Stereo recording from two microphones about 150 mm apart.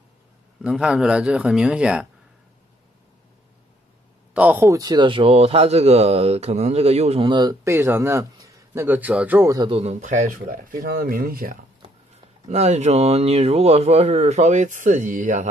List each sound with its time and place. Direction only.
0.6 s speech: 5° right (ahead or behind)
4.3 s a man's voice: 10° right (ahead or behind)
9.5 s a man's voice: 30° right (ahead or behind)
9.8 s speech: 50° right (ahead or behind); by 11.5 s 75° right (ahead or behind)
12.4 s speech: 45° right (ahead or behind)